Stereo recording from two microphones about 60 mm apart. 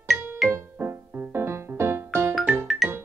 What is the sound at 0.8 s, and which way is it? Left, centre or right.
Music, right.